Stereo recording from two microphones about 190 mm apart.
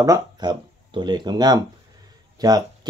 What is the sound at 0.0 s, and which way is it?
Speech, 20° right (ahead or behind).